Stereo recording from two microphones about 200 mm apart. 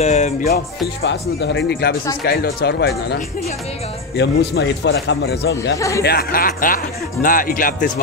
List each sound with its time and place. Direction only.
0.0 s music: 35° left (ahead or behind)
1.0 s a man's voice: 60° left (ahead or behind)
4.2 s a man's voice: 60° left (ahead or behind)
5.8 s speech: 15° left (ahead or behind)
6.0 s speech: 50° left (ahead or behind)